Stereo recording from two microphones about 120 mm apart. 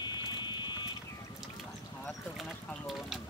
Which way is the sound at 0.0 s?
40° left (ahead or behind).